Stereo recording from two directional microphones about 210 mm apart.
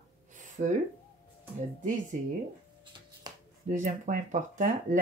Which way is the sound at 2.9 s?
20° right (ahead or behind).